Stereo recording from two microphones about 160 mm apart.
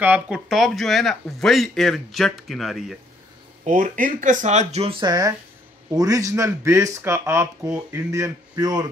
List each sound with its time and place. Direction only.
0.0 s speech: 10° right (ahead or behind)
3.6 s speech: 50° right (ahead or behind); by 8.8 s 25° right (ahead or behind)